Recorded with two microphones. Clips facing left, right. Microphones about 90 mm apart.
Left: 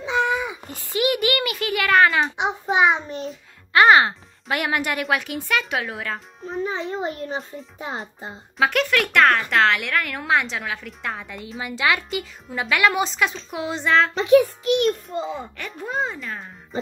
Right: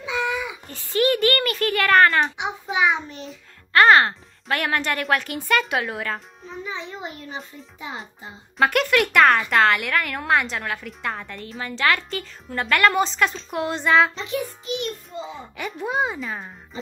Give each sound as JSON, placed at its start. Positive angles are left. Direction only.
{"t": 0.0, "sound": "babbling", "side_deg": 35}
{"t": 0.7, "sound": "a child's voice", "side_deg": 15}
{"t": 2.4, "sound": "a child's voice", "side_deg": 30}
{"t": 3.7, "sound": "speech", "side_deg": 10}
{"t": 6.5, "sound": "a child's voice", "side_deg": 45}
{"t": 8.5, "sound": "speech", "side_deg": 0}
{"t": 14.1, "sound": "a child's voice", "side_deg": 65}
{"t": 15.5, "sound": "a child's voice", "side_deg": -5}